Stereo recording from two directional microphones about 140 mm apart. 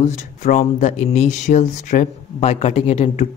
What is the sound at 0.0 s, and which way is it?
Speech, 60° left (ahead or behind).